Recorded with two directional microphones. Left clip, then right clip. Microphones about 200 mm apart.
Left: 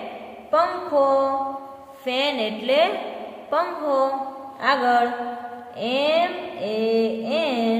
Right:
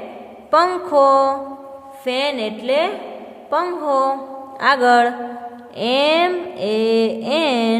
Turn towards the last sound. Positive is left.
turn(degrees=-50)  # may be behind; listen again after turning